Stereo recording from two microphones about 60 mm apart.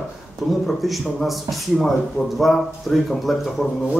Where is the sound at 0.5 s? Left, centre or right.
Centre.